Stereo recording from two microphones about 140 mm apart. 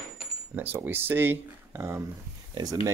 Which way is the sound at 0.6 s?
15° right (ahead or behind).